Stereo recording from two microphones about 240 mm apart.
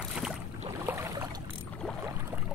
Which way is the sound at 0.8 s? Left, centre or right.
Centre.